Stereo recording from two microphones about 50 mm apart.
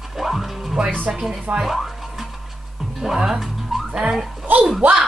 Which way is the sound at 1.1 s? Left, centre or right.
Centre.